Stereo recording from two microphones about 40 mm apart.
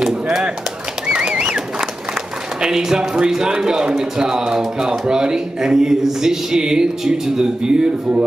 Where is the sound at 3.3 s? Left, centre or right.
Centre.